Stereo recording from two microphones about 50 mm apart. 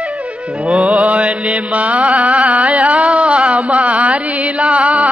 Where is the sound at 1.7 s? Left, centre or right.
Right.